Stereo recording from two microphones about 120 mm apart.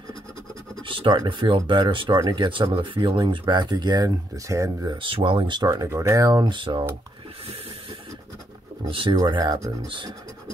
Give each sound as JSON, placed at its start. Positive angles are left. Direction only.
{"t": 0.8, "sound": "speech", "side_deg": -45}
{"t": 4.9, "sound": "speech", "side_deg": -45}
{"t": 8.8, "sound": "speech", "side_deg": -45}